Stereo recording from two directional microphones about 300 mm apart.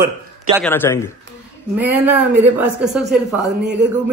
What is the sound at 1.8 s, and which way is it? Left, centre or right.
Speech, centre.